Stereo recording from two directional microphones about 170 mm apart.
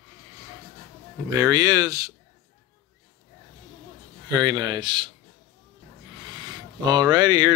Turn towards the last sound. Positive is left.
turn(degrees=-25)  # may be behind; listen again after turning